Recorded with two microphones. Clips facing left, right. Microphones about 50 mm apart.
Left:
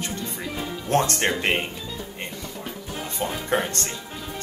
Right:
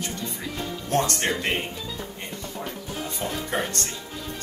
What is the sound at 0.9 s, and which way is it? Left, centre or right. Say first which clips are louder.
Speech: left 2 dB; left.